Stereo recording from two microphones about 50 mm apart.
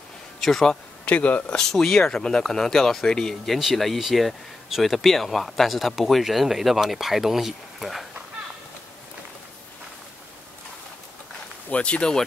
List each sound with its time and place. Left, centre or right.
0.4 s speech: centre
1.0 s speech: left
1.6 s speech: centre
3.5 s speech: centre
11.7 s speech: left